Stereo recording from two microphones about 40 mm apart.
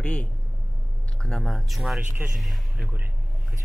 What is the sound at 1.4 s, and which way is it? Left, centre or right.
Speech, centre.